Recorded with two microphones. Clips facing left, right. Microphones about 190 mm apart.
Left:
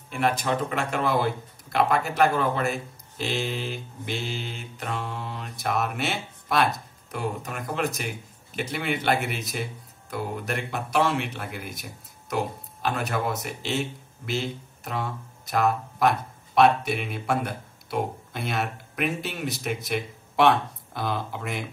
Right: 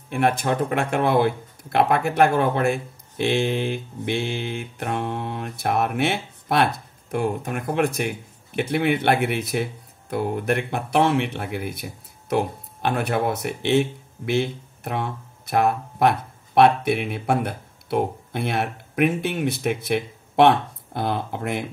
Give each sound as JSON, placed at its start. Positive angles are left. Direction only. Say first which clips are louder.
{"t": 0.1, "sound": "music", "louder": "right 4 dB", "side_deg": -55}
{"t": 12.8, "sound": "speech", "louder": "right 5 dB", "side_deg": -55}